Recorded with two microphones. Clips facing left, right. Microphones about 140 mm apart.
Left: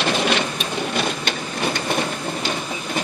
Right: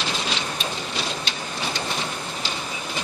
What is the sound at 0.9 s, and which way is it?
Printer, 55° left (ahead or behind).